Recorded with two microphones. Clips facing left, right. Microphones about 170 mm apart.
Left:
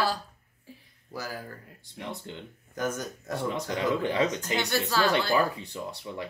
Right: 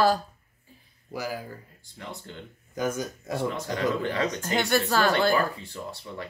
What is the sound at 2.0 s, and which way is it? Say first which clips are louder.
Speech: left 2 dB; 20° left (ahead or behind).